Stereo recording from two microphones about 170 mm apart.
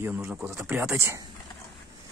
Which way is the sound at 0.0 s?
15° right (ahead or behind).